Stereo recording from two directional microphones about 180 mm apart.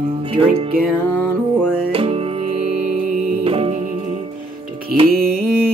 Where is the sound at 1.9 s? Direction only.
30° right (ahead or behind).